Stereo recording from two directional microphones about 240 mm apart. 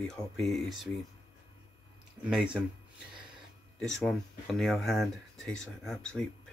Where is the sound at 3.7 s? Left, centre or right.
Centre.